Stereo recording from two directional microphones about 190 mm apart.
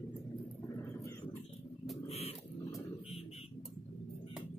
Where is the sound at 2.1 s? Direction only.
35° left (ahead or behind).